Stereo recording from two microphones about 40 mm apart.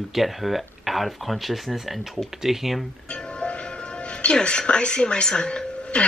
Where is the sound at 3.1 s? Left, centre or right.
Left.